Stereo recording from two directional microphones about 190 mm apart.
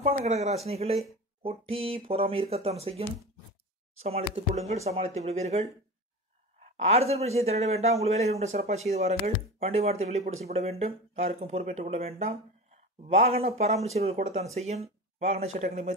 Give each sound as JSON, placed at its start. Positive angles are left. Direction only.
{"t": 0.0, "sound": "speech", "side_deg": -35}